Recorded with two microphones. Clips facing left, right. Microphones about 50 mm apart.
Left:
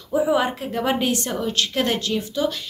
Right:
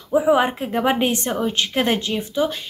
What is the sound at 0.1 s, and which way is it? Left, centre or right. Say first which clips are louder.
A woman's voice: right 3 dB; right.